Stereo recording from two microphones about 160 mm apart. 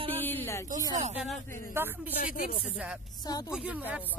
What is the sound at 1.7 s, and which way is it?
Speech, 15° right (ahead or behind).